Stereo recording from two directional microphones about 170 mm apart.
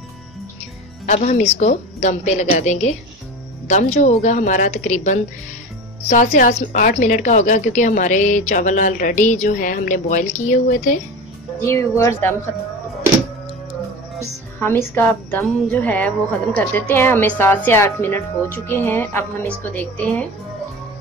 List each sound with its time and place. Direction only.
1.0 s a woman's voice: 45° left (ahead or behind)
11.6 s a woman's voice: 15° left (ahead or behind)
14.2 s a woman's voice: 15° left (ahead or behind)